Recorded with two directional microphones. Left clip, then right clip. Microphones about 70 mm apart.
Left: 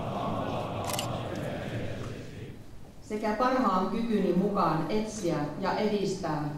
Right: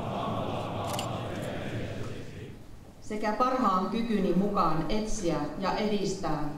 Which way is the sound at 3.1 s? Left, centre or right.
Right.